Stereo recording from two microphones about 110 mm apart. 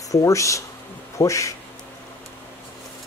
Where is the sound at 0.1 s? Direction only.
30° left (ahead or behind).